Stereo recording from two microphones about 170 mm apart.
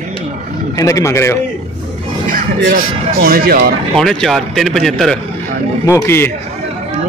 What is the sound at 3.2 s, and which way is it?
Speech, 65° right (ahead or behind).